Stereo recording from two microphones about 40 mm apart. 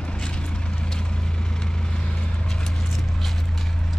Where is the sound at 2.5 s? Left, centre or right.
Centre.